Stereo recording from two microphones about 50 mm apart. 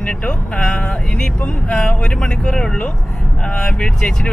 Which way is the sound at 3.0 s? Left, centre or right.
Centre.